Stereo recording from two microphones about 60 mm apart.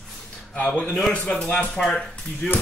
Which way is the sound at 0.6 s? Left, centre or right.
Left.